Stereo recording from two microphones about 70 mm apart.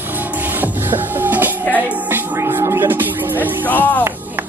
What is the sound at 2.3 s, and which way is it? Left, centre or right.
Music, right.